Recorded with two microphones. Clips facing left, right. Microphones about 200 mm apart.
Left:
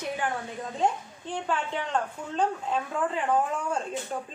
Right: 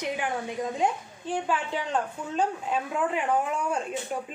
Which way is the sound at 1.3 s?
10° right (ahead or behind).